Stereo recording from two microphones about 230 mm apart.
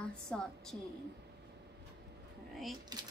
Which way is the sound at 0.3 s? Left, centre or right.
Centre.